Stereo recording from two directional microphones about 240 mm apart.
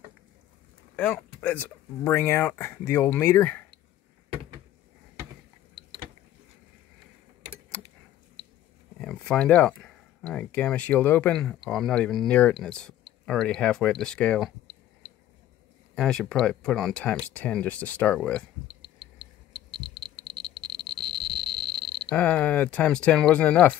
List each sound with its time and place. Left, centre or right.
0.9 s speech: centre
9.0 s speech: centre
15.9 s speech: centre
18.8 s a sound: right
22.1 s speech: centre